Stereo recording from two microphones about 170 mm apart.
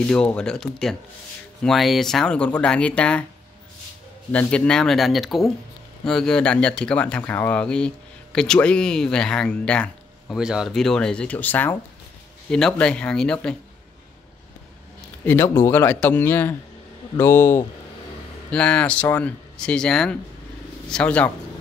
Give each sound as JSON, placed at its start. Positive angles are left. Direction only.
{"t": 0.1, "sound": "speech", "side_deg": 5}
{"t": 4.3, "sound": "speech", "side_deg": 5}
{"t": 15.2, "sound": "speech", "side_deg": 15}